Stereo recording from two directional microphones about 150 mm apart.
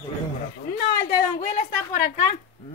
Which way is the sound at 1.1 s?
70° left (ahead or behind).